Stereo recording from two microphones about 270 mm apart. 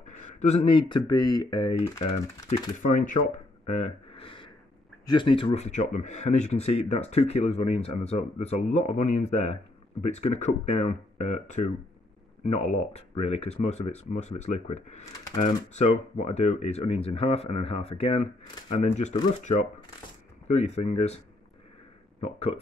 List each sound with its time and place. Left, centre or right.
0.0 s a sound: left
0.4 s speech: left
22.2 s speech: left